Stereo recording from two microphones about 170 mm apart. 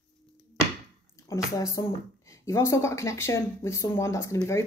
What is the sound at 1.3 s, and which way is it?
A woman's voice, 20° left (ahead or behind).